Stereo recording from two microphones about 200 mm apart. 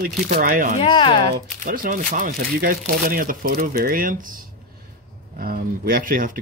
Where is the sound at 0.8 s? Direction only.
25° left (ahead or behind).